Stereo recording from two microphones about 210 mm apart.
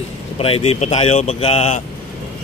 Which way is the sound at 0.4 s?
30° left (ahead or behind).